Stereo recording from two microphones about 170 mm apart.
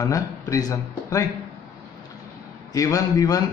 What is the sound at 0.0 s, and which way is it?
Speech, 20° left (ahead or behind).